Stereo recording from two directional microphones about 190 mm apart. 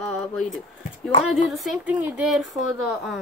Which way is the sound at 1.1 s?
30° left (ahead or behind).